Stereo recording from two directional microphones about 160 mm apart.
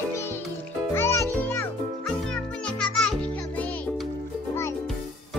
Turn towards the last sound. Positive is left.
turn(degrees=10)  # may be behind; listen again after turning